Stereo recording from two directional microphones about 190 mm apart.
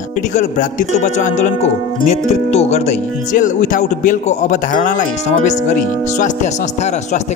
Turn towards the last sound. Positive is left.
turn(degrees=40)  # may be behind; listen again after turning